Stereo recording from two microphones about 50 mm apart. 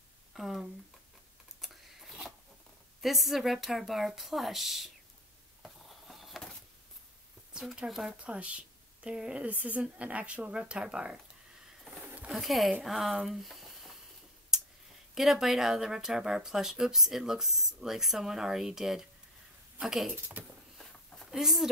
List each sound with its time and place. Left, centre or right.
0.3 s speech: centre
1.6 s a sound: centre
3.0 s speech: centre
5.6 s a sound: centre
7.5 s speech: centre
9.4 s speech: right
12.3 s speech: centre
14.5 s a sound: centre
15.1 s speech: centre
21.3 s speech: centre